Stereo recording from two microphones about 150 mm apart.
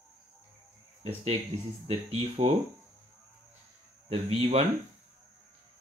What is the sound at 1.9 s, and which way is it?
Speech, 45° right (ahead or behind).